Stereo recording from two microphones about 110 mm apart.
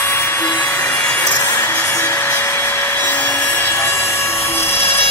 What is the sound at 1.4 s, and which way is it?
Music, 20° left (ahead or behind).